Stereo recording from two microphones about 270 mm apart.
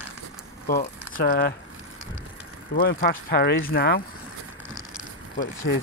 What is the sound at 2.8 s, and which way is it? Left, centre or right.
Speech, left.